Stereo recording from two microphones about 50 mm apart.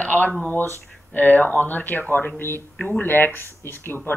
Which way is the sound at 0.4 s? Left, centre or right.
Left.